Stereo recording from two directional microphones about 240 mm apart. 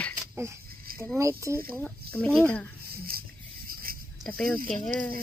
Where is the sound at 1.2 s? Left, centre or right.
Centre.